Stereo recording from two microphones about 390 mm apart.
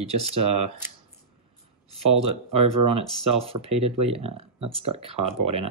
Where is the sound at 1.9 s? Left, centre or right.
Centre.